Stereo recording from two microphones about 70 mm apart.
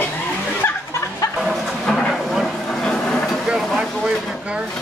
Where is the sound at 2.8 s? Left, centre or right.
Centre.